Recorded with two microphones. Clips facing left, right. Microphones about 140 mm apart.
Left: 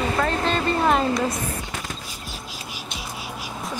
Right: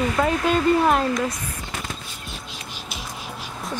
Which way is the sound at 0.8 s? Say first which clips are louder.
Even; centre (ahead or behind).